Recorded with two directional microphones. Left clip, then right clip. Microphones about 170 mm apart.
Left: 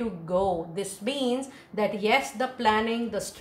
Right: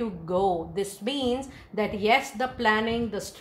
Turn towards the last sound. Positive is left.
turn(degrees=-30)  # may be behind; listen again after turning